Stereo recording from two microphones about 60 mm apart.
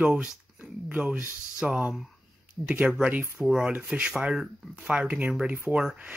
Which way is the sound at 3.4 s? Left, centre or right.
Centre.